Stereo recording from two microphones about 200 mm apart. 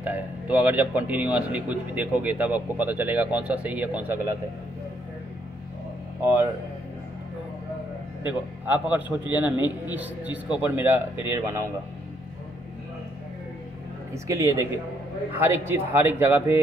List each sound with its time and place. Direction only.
0.0 s a man's voice: 10° right (ahead or behind)
8.3 s a man's voice: 10° right (ahead or behind)
14.1 s a man's voice: 15° right (ahead or behind)